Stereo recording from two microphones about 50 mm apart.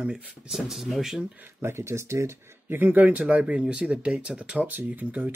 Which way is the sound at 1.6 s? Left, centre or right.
Right.